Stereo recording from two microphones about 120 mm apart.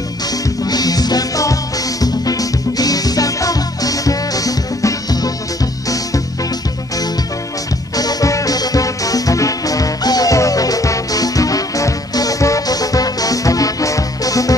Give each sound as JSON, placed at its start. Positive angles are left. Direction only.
{"t": 0.7, "sound": "music", "side_deg": 30}
{"t": 7.9, "sound": "music", "side_deg": 30}